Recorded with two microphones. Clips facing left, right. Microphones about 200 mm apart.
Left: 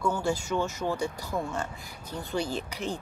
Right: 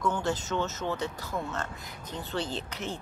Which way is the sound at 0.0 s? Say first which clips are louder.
Left 1 dB; 10° left (ahead or behind).